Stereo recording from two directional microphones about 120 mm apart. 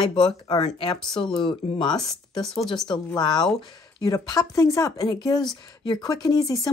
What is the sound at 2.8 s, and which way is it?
Speech, 35° left (ahead or behind).